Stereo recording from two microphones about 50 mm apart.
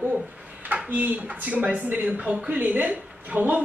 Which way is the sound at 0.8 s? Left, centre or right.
Right.